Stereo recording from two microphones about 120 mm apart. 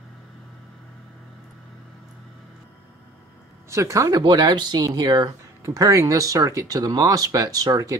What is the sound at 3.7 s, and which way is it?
Speech, 25° right (ahead or behind).